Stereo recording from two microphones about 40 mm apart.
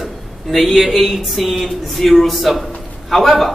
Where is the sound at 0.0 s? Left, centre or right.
Centre.